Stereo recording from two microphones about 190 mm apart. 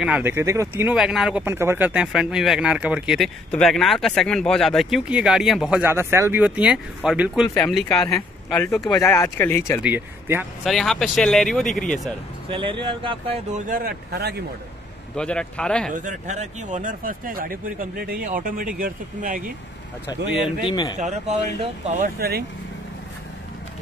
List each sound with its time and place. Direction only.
0.0 s speech: 10° right (ahead or behind)
7.5 s speech: 10° left (ahead or behind)
9.8 s speech: 10° right (ahead or behind)
10.6 s speech: centre (ahead or behind)
12.4 s speech: 25° right (ahead or behind)
13.7 s speech: 50° right (ahead or behind)
15.1 s speech: 5° left (ahead or behind)
15.9 s speech: 40° right (ahead or behind)
20.6 s speech: 25° left (ahead or behind)
21.0 s speech: 35° right (ahead or behind)